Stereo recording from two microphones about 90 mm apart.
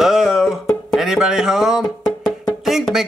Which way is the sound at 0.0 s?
5° right (ahead or behind).